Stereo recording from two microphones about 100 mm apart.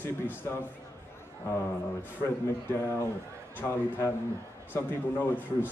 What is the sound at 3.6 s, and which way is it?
A man's voice, 25° left (ahead or behind).